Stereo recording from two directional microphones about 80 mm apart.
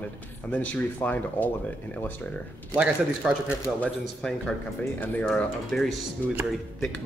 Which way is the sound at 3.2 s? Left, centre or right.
Centre.